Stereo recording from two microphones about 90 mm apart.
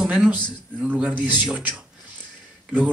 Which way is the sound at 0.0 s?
15° right (ahead or behind).